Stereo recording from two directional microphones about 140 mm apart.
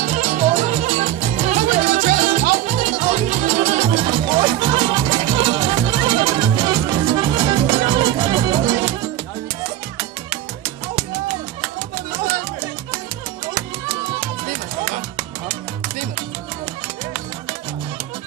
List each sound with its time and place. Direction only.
0.0 s music: 60° right (ahead or behind)
3.9 s music: 40° right (ahead or behind)